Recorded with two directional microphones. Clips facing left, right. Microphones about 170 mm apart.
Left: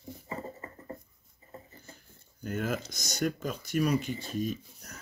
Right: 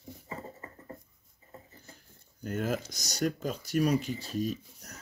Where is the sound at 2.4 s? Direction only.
35° right (ahead or behind).